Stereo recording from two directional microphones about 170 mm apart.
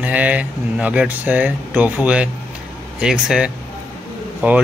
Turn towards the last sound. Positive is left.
turn(degrees=-10)  # may be behind; listen again after turning